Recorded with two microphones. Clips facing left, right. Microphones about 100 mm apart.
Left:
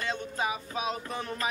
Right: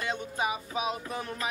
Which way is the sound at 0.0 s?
15° right (ahead or behind).